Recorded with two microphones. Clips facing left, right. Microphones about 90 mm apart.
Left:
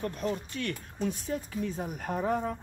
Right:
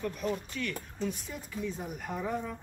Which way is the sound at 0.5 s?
40° left (ahead or behind).